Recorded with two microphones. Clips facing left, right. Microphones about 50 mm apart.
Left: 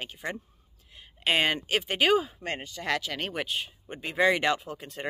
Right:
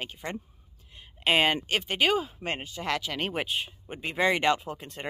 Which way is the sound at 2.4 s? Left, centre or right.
Centre.